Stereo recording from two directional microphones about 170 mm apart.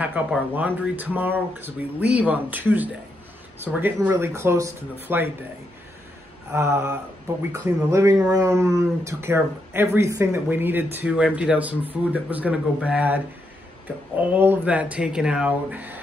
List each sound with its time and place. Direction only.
0.0 s speech: 10° right (ahead or behind)
6.5 s speech: 15° right (ahead or behind)
14.3 s speech: 10° right (ahead or behind)